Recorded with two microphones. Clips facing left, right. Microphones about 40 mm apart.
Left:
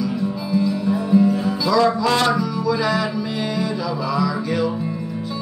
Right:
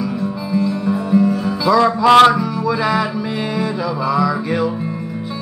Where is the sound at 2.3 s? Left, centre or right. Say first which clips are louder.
Right 2 dB; right.